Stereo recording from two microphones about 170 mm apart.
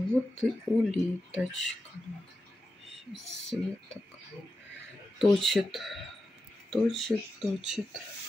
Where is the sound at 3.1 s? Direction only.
Centre (ahead or behind).